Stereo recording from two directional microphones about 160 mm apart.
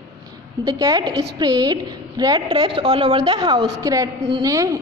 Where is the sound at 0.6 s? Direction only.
25° right (ahead or behind).